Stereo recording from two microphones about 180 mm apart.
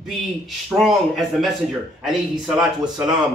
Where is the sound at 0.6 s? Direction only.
Centre (ahead or behind).